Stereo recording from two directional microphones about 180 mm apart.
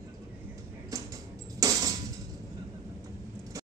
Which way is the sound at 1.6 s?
20° right (ahead or behind).